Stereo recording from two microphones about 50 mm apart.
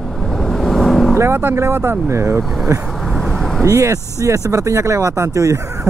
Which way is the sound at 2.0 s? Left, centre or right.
Right.